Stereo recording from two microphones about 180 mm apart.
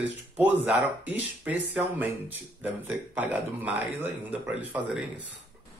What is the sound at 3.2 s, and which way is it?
Speech, 10° right (ahead or behind).